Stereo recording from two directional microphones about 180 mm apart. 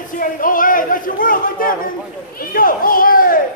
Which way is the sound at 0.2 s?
50° left (ahead or behind).